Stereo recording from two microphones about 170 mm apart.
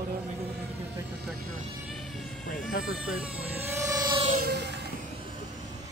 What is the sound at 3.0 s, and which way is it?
Speech, 10° right (ahead or behind).